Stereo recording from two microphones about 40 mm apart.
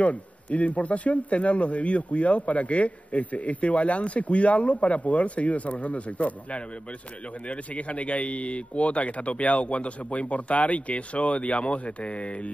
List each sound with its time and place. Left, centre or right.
0.0 s speech: left